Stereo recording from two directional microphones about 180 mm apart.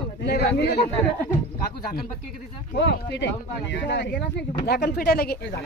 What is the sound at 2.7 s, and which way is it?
Speech, 75° left (ahead or behind).